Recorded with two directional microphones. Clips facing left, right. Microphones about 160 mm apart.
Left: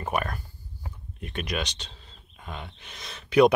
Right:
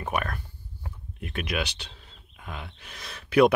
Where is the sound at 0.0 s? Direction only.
Centre (ahead or behind).